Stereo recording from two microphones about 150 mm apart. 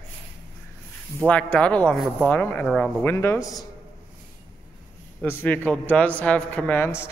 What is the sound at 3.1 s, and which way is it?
Speech, 15° left (ahead or behind).